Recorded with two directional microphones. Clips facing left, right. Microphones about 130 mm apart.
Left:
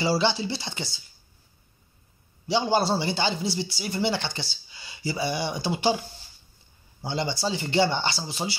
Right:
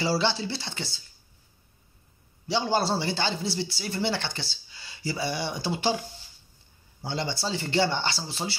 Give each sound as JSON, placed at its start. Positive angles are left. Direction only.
{"t": 0.0, "sound": "speech", "side_deg": 20}
{"t": 2.4, "sound": "speech", "side_deg": 15}
{"t": 7.0, "sound": "speech", "side_deg": 15}